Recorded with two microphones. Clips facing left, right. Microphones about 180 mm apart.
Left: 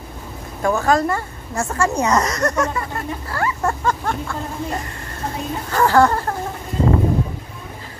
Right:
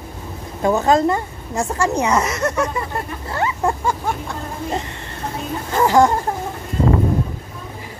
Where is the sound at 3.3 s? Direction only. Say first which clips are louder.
Right 2 dB; 20° right (ahead or behind).